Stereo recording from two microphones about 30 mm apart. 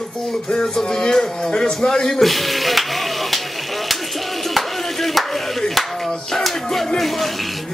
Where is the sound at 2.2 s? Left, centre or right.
Centre.